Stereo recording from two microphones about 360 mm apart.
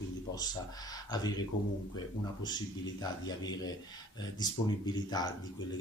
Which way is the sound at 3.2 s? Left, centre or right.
Centre.